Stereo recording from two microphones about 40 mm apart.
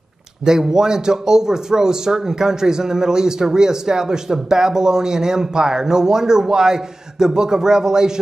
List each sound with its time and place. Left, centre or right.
0.5 s speech: centre